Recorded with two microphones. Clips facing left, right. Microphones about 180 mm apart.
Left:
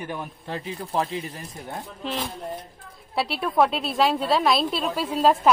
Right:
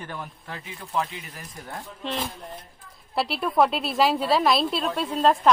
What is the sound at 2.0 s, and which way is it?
A woman's voice, centre (ahead or behind).